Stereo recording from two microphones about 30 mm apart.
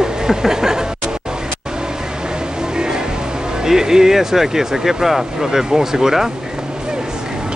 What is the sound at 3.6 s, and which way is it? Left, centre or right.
Speech, centre.